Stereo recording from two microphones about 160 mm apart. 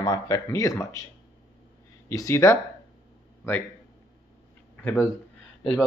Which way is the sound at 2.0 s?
20° left (ahead or behind).